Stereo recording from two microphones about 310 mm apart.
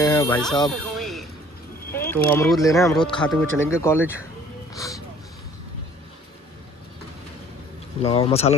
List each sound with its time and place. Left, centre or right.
0.0 s a sound: centre
1.9 s speech: centre
8.0 s speech: centre